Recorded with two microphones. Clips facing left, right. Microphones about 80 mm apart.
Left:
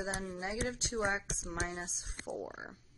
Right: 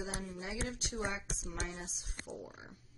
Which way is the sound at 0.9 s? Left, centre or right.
Left.